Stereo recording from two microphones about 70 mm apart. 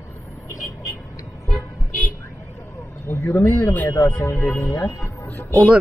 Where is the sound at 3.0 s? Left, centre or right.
Left.